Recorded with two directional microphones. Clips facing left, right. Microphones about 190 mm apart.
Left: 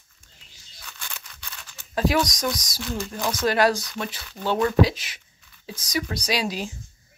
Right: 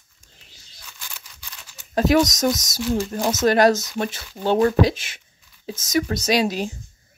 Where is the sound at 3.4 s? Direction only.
45° right (ahead or behind).